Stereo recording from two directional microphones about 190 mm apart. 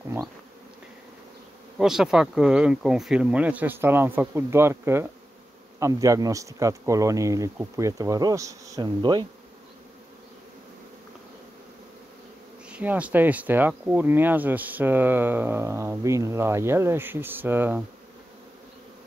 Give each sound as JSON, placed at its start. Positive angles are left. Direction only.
{"t": 1.8, "sound": "speech", "side_deg": -5}
{"t": 12.6, "sound": "speech", "side_deg": -5}